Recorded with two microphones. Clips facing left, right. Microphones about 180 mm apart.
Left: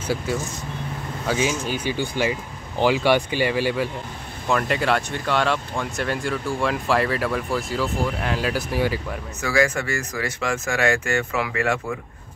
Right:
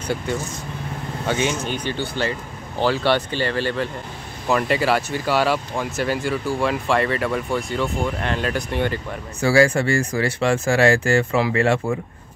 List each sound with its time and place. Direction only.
0.0 s speech: 5° left (ahead or behind)
4.5 s speech: 5° right (ahead or behind)
9.4 s speech: 30° right (ahead or behind)